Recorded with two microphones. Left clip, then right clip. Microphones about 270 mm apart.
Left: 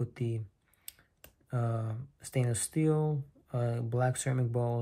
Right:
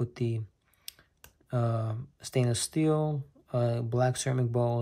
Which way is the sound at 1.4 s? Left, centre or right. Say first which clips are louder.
Right 5 dB; centre.